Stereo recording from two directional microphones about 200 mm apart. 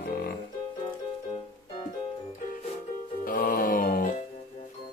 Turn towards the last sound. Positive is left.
turn(degrees=45)  # may be behind; listen again after turning